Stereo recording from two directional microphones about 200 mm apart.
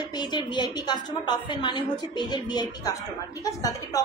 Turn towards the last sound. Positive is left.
turn(degrees=15)  # may be behind; listen again after turning